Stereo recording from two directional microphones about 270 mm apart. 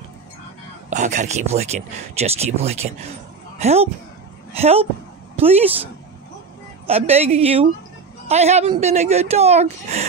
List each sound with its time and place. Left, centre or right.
0.8 s speech: right
6.9 s speech: right